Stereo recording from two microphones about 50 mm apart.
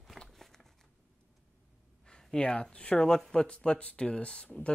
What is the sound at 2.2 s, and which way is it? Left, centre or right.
Speech, centre.